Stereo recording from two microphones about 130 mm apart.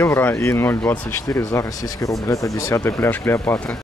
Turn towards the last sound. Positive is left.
turn(degrees=20)  # may be behind; listen again after turning